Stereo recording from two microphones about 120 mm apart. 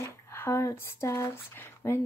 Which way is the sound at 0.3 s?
20° left (ahead or behind).